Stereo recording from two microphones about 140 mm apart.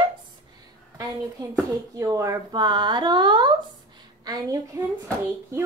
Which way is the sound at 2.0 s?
25° right (ahead or behind).